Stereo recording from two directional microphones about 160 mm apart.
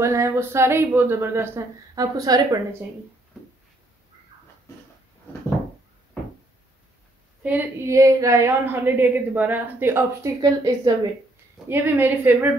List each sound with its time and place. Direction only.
0.0 s a woman's voice: 15° right (ahead or behind)
7.4 s a woman's voice: 15° right (ahead or behind)
11.7 s a woman's voice: 10° right (ahead or behind)